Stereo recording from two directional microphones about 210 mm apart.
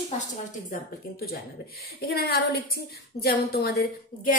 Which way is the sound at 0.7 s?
45° left (ahead or behind).